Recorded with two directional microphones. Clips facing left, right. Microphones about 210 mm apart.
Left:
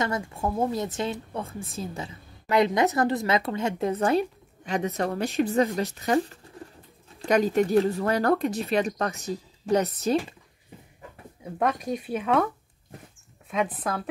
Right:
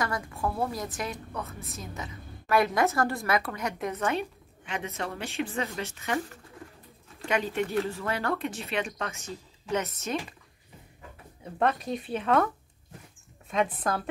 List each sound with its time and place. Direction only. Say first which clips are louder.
0.0 s a woman's voice: left 3 dB; 25° left (ahead or behind)
11.6 s speech: left 1 dB; 10° left (ahead or behind)
13.5 s speech: even; 5° left (ahead or behind)